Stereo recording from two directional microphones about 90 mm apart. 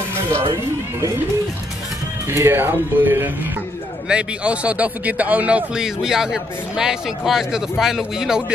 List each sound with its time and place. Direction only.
2.2 s a man's voice: 30° right (ahead or behind); by 8.5 s 5° right (ahead or behind)